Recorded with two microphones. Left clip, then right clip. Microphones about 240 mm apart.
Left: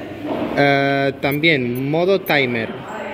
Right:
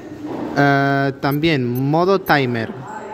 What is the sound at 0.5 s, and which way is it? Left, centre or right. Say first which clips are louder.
Speech: even; right.